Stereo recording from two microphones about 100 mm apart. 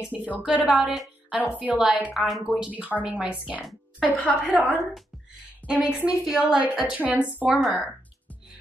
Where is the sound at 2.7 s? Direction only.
15° right (ahead or behind).